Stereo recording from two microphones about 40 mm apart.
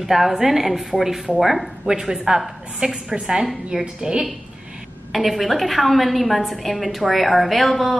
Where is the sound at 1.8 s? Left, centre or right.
Centre.